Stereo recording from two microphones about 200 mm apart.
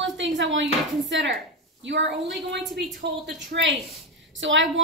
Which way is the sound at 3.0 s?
60° right (ahead or behind).